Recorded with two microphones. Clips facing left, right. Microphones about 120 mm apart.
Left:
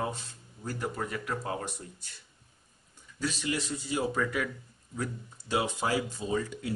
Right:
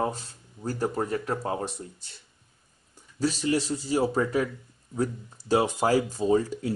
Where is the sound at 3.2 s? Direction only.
35° right (ahead or behind).